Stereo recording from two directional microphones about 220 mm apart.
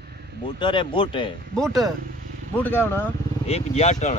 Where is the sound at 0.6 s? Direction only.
20° left (ahead or behind).